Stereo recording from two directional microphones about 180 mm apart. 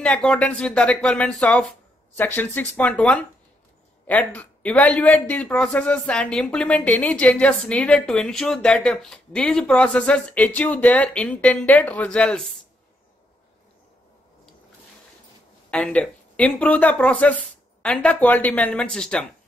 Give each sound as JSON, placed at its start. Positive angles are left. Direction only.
{"t": 0.0, "sound": "speech", "side_deg": 5}
{"t": 15.7, "sound": "speech", "side_deg": 5}